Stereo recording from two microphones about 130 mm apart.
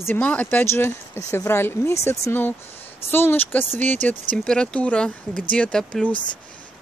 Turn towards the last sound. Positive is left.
turn(degrees=5)  # may be behind; listen again after turning